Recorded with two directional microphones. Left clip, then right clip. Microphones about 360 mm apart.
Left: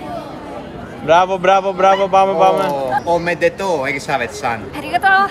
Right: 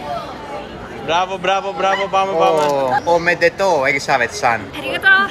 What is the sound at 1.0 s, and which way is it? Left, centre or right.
Speech, centre.